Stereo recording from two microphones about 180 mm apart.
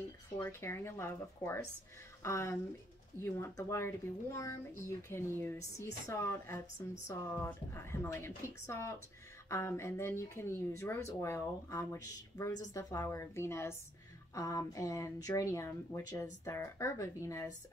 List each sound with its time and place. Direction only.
0.4 s speech: 15° left (ahead or behind)